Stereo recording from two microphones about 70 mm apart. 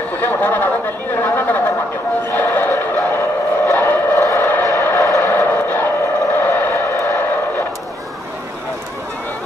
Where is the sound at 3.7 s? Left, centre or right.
Left.